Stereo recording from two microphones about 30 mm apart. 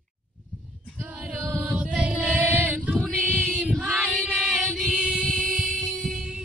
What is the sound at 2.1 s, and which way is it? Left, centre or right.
Female singing, right.